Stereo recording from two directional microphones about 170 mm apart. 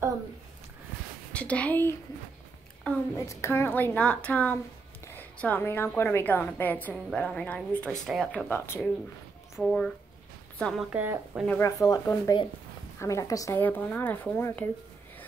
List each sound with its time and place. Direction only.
1.3 s a woman's voice: 5° left (ahead or behind)
3.2 s a woman's voice: 15° left (ahead or behind)
9.6 s speech: centre (ahead or behind)
10.9 s a woman's voice: 10° right (ahead or behind)
11.6 s a woman's voice: 20° left (ahead or behind)